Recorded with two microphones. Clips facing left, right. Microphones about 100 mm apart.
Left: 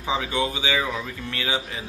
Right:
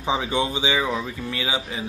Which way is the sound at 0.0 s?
25° right (ahead or behind).